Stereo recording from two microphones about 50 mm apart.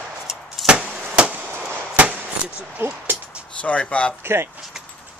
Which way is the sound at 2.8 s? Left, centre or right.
Right.